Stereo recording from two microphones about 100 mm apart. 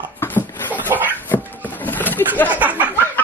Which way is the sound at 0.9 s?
30° right (ahead or behind).